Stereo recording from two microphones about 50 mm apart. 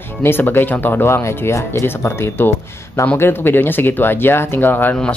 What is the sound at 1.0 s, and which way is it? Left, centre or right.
Speech, left.